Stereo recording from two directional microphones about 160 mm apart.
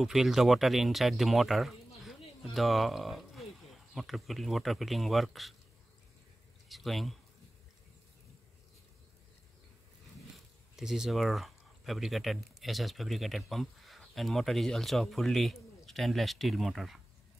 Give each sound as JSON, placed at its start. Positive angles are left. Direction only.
{"t": 0.0, "sound": "speech", "side_deg": 0}
{"t": 6.7, "sound": "speech", "side_deg": 0}
{"t": 10.8, "sound": "speech", "side_deg": -5}